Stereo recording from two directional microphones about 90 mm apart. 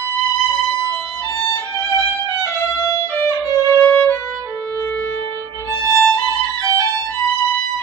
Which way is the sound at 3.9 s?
25° left (ahead or behind).